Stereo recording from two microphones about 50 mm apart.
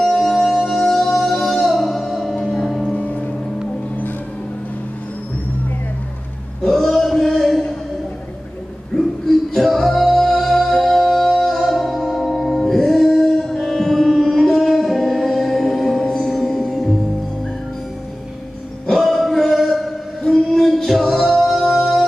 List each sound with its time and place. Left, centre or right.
0.0 s music: centre
2.9 s music: left
6.6 s a sound: centre
8.9 s music: centre
18.9 s music: centre